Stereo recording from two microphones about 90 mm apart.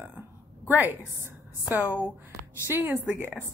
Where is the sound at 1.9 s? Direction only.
25° right (ahead or behind).